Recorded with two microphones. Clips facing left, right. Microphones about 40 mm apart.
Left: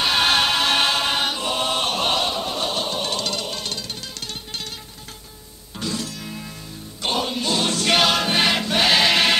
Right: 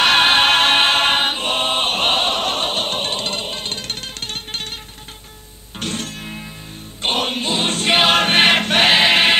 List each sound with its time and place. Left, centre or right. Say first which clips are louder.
0.0 s music: right 6 dB; right
0.3 s choir: right 5 dB; right
2.3 s music: right 4 dB; right
3.8 s music: right 4 dB; right
5.8 s music: right 2 dB; right
7.4 s music: right 1 dB; right
8.2 s choir: right 6 dB; right
8.9 s choir: right 2 dB; right